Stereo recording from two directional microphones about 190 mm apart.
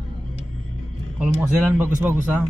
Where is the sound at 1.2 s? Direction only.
10° right (ahead or behind).